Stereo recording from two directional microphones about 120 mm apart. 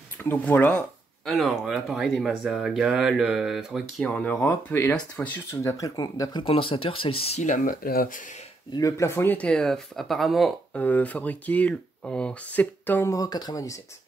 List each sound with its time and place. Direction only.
0.2 s speech: 15° left (ahead or behind)
1.2 s speech: centre (ahead or behind)
4.1 s speech: 10° left (ahead or behind); by 6.4 s 30° left (ahead or behind)
6.4 s speech: 50° left (ahead or behind); by 7.6 s 80° left
8.7 s speech: 25° left (ahead or behind); by 10.8 s centre (ahead or behind)
10.8 s speech: 15° left (ahead or behind)
13.1 s speech: 30° left (ahead or behind)